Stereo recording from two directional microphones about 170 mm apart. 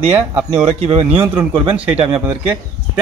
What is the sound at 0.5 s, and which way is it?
Speech, 35° right (ahead or behind).